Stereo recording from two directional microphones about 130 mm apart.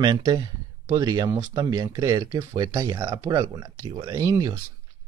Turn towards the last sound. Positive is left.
turn(degrees=-30)  # may be behind; listen again after turning